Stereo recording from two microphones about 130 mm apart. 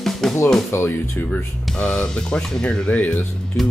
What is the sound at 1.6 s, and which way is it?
Speech, 5° left (ahead or behind).